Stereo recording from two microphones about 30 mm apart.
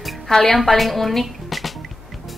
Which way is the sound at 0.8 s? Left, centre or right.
Centre.